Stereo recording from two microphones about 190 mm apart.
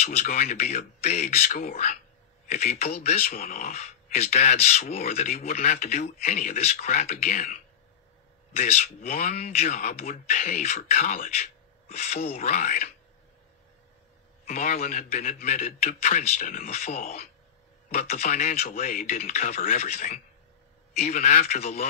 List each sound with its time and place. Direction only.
0.0 s speech: 35° left (ahead or behind)
8.5 s speech: 35° left (ahead or behind)
14.4 s speech: 35° left (ahead or behind)